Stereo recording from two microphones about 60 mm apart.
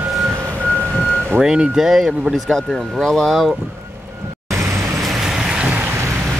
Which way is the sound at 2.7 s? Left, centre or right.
Centre.